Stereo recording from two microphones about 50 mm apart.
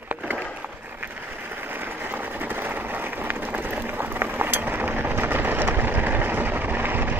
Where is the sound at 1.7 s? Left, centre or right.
Right.